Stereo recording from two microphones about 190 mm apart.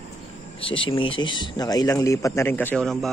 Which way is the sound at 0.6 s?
30° left (ahead or behind).